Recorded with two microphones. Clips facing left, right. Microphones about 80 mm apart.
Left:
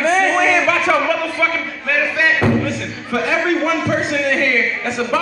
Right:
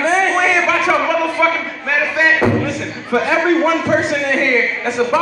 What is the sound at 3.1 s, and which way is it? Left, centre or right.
A man's voice, right.